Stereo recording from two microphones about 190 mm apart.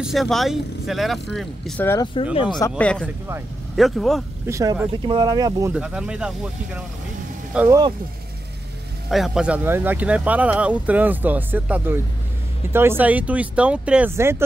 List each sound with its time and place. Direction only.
0.0 s speech: centre (ahead or behind)
2.1 s speech: 30° left (ahead or behind)
2.8 s speech: 5° left (ahead or behind)
4.5 s speech: 15° right (ahead or behind)
5.7 s speech: 5° right (ahead or behind)
9.1 s speech: centre (ahead or behind)